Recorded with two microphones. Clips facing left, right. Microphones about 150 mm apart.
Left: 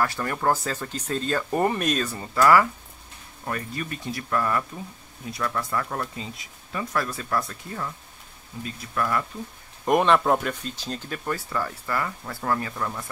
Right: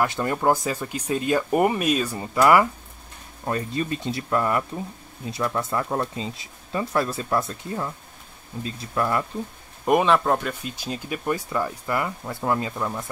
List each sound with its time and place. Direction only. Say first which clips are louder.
0.0 s speech: right 3 dB; 20° right (ahead or behind)
2.1 s speech: right 1 dB; 20° right (ahead or behind)
9.8 s speech: right 1 dB; centre (ahead or behind)
10.5 s speech: right 1 dB; 10° right (ahead or behind)